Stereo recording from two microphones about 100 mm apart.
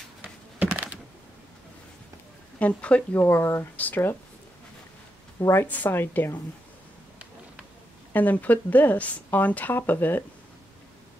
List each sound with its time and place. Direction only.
0.2 s a sound: 15° right (ahead or behind)
2.6 s speech: 15° left (ahead or behind)
5.4 s a woman's voice: 25° left (ahead or behind)
8.1 s speech: 15° left (ahead or behind)